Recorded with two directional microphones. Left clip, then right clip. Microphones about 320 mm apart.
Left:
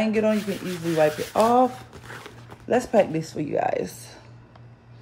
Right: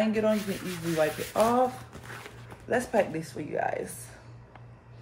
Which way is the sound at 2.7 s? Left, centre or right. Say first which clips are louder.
Left 6 dB; left.